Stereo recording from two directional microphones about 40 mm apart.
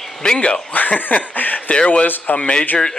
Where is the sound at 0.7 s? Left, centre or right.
Left.